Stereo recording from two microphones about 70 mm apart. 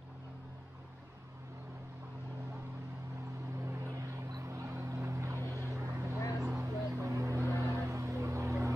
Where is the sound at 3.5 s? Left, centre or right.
Right.